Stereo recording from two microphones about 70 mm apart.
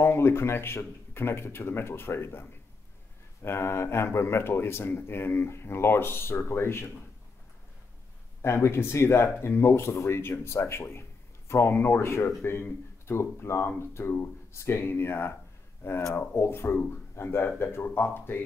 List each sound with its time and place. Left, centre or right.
0.0 s speech: left
3.4 s speech: left
8.4 s speech: left